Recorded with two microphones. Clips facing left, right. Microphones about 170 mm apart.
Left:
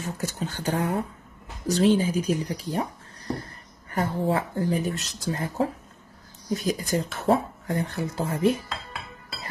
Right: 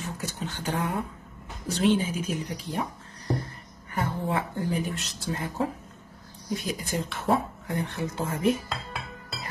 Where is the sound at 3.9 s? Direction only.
35° left (ahead or behind).